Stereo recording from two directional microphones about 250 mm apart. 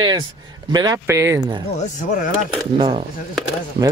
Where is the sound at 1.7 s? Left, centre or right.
Left.